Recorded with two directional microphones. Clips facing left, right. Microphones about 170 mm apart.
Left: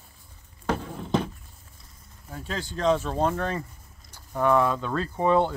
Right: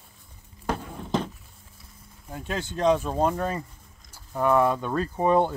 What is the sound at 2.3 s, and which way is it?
Speech, 20° right (ahead or behind).